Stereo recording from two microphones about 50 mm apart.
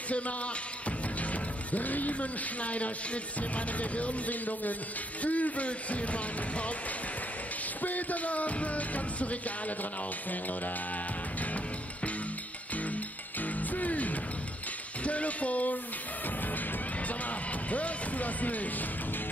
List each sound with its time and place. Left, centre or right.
0.8 s music: left
7.8 s music: left
12.7 s music: left
17.5 s speech: left